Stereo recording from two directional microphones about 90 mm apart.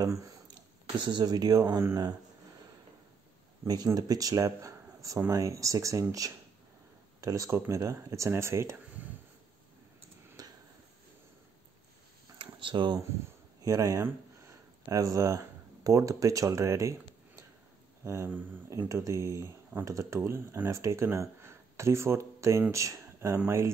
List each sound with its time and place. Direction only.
0.0 s speech: 35° right (ahead or behind)
0.9 s speech: 55° right (ahead or behind)
3.6 s speech: 45° right (ahead or behind)
7.2 s speech: 40° right (ahead or behind)
10.4 s a sound: 45° right (ahead or behind)
12.5 s speech: 65° right (ahead or behind)
13.7 s speech: 35° right (ahead or behind)
18.0 s speech: 30° right (ahead or behind)